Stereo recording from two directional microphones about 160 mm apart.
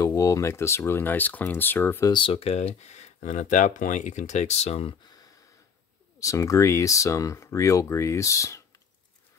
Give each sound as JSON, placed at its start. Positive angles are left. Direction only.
{"t": 0.0, "sound": "speech", "side_deg": 20}
{"t": 2.1, "sound": "speech", "side_deg": 35}
{"t": 6.1, "sound": "speech", "side_deg": 20}